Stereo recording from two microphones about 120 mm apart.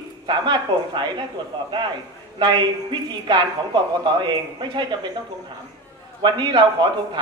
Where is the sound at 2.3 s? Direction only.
40° right (ahead or behind).